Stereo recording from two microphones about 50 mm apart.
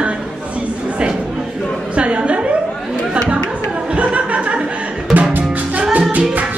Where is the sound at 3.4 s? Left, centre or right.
Right.